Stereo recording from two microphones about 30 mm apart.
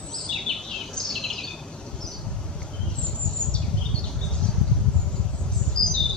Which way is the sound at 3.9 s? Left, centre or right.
Left.